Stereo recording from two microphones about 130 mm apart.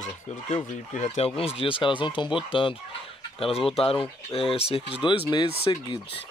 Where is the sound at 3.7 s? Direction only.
45° left (ahead or behind).